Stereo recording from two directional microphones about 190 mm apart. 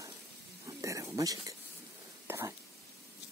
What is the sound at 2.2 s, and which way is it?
Whispering, 15° right (ahead or behind).